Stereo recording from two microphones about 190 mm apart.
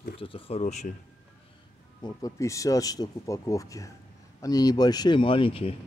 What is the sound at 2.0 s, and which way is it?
Speech, 15° left (ahead or behind).